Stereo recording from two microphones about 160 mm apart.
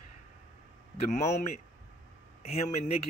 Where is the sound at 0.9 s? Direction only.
45° left (ahead or behind).